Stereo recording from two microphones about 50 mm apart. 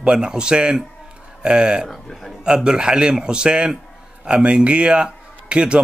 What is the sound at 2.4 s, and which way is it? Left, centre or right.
A man's voice, centre.